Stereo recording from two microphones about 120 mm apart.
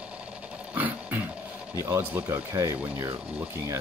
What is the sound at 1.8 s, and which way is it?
Speech, 20° right (ahead or behind).